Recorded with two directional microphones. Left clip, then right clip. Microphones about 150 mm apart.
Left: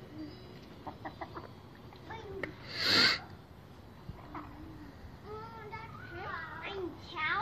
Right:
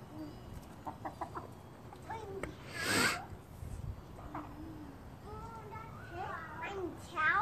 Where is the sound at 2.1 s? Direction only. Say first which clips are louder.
Left 1 dB; 25° right (ahead or behind).